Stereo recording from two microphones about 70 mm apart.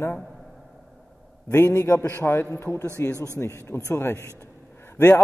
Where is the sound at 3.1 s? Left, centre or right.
Right.